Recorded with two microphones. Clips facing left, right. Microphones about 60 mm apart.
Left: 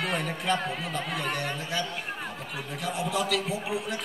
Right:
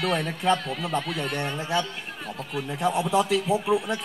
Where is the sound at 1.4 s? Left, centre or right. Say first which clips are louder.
Right 4 dB; right.